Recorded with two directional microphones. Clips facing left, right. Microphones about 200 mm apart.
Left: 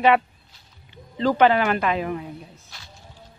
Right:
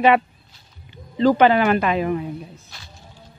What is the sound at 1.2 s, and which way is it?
Speech, 10° right (ahead or behind).